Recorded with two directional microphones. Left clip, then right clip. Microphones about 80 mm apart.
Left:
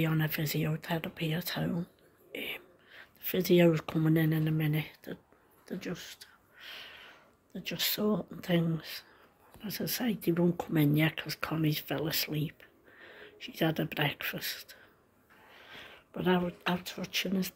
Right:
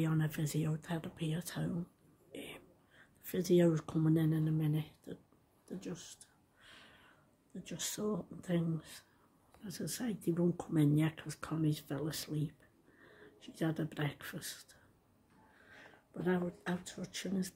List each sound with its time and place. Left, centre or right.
0.0 s speech: right
4.0 s speech: right; by 5.2 s centre
5.7 s a sound: centre
7.5 s speech: centre
15.5 s a sound: centre
16.2 s speech: centre